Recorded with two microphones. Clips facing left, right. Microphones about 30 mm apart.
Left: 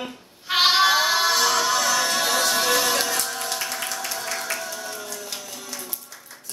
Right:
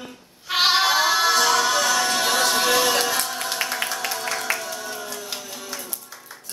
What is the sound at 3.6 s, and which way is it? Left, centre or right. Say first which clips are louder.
Music: right 4 dB; right.